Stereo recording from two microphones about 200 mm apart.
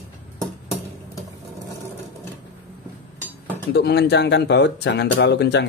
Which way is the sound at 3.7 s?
55° left (ahead or behind).